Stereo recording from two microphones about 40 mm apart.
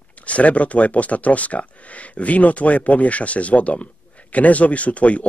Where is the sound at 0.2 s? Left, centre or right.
Left.